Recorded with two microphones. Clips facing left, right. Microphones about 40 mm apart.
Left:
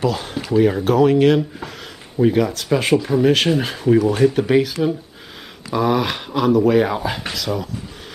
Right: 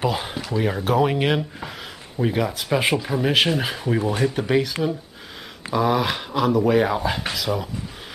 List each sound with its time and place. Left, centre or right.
0.0 s speech: centre
0.6 s speech: centre
0.9 s speech: centre
2.1 s speech: centre